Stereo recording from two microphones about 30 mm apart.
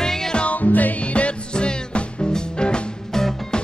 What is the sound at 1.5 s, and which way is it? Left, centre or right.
Music, left.